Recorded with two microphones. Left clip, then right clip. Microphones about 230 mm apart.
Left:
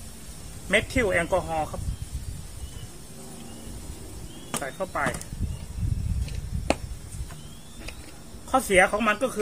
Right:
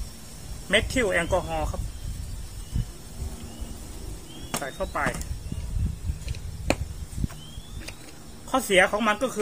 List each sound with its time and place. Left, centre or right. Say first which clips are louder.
0.7 s speech: even; centre
4.5 s speech: even; centre
8.5 s speech: left 1 dB; centre